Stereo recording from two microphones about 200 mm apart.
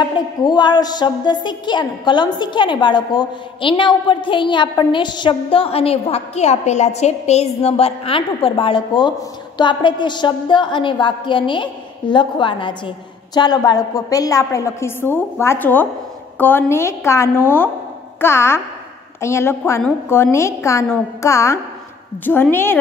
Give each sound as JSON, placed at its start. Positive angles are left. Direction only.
{"t": 0.1, "sound": "a woman's voice", "side_deg": 20}